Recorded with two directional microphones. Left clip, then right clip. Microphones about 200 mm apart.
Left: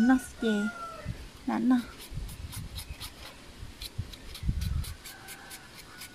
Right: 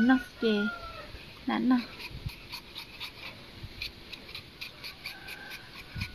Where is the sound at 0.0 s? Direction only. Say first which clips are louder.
Even; 25° left (ahead or behind).